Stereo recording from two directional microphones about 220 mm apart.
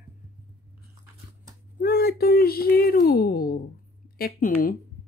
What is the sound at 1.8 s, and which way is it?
Speech, 45° left (ahead or behind).